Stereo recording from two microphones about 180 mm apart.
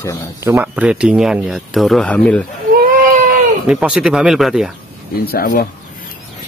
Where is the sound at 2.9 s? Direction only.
50° right (ahead or behind).